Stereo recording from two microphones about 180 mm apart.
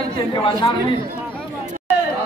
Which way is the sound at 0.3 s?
25° left (ahead or behind).